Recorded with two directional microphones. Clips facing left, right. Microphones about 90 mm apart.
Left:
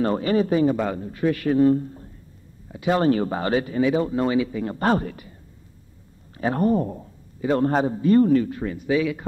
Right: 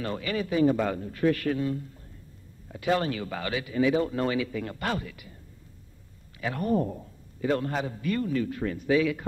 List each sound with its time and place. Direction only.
0.0 s speech: 35° left (ahead or behind); by 1.5 s 15° left (ahead or behind)
1.5 s speech: 40° left (ahead or behind)
2.7 s speech: 20° left (ahead or behind)
3.0 s speech: 35° left (ahead or behind)
4.7 s speech: 40° left (ahead or behind)
6.3 s speech: 35° left (ahead or behind)
8.6 s speech: 15° left (ahead or behind)